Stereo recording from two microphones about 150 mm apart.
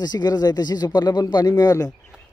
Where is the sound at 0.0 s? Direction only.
25° left (ahead or behind).